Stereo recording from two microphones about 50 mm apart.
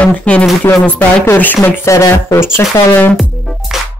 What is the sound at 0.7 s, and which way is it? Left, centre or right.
Speech, left.